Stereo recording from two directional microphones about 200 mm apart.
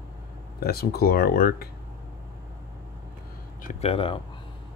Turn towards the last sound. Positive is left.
turn(degrees=30)  # may be behind; listen again after turning